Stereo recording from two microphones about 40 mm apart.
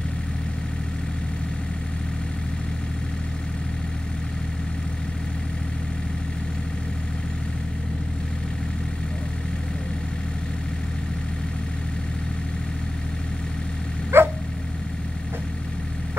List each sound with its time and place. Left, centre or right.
14.1 s dog: right